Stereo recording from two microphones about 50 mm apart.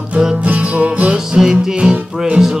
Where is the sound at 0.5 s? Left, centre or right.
Right.